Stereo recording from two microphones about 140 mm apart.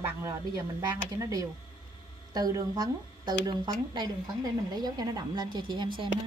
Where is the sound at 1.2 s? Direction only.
25° right (ahead or behind).